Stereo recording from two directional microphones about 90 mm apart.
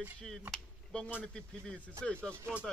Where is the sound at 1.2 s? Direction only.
10° left (ahead or behind).